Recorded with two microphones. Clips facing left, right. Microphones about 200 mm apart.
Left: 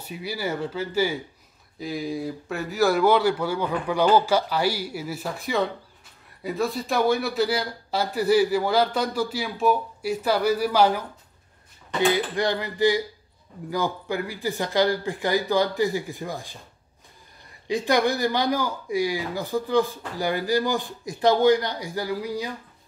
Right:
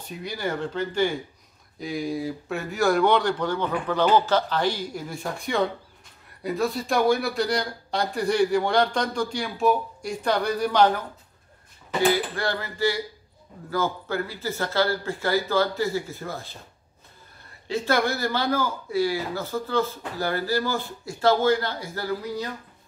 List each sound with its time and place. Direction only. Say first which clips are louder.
0.0 s a man's voice: even; 5° left (ahead or behind)
12.4 s speech: left 4 dB; 15° left (ahead or behind)
17.6 s speech: left 2 dB; 15° left (ahead or behind)